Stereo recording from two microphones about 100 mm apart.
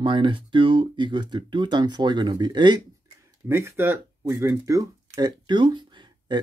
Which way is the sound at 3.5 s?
25° right (ahead or behind).